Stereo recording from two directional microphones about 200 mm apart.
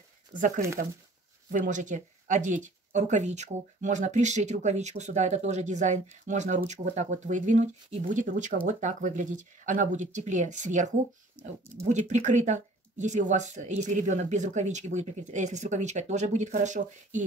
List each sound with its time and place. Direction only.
1.5 s speech: 40° right (ahead or behind)